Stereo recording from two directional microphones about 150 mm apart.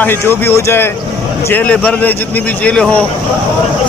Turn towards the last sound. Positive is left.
turn(degrees=10)  # may be behind; listen again after turning